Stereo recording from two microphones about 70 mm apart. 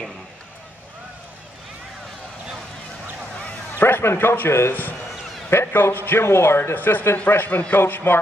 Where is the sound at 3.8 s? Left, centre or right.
Left.